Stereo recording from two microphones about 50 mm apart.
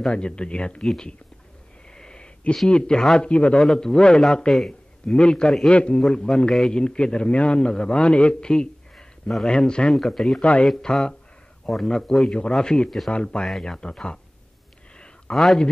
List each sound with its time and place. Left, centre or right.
0.1 s speech: left
2.0 s sniff: centre
2.7 s a man's voice: centre
3.5 s a man's voice: centre
5.0 s a man's voice: centre
5.9 s a man's voice: centre
10.4 s speech: left
10.8 s a man's voice: centre
15.3 s a man's voice: centre